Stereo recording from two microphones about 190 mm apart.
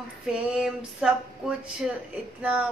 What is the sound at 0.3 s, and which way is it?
Speech, 5° right (ahead or behind).